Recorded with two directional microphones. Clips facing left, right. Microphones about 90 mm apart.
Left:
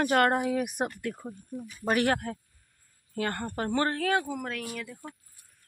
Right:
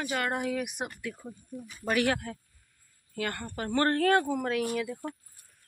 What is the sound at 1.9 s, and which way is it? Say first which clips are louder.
Speech: left 2 dB; 35° left (ahead or behind).